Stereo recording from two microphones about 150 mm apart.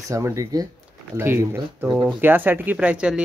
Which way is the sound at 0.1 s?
20° right (ahead or behind).